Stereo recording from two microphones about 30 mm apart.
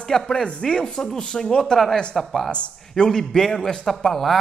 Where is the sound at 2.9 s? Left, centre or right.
Centre.